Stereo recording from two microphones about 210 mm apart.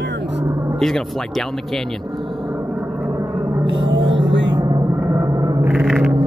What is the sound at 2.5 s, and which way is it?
Vehicle, 10° right (ahead or behind).